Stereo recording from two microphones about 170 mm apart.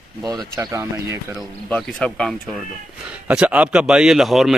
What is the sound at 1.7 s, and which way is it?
Speech, 5° left (ahead or behind).